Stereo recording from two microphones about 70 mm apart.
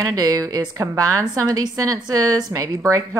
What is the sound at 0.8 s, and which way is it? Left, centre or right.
A woman's voice, right.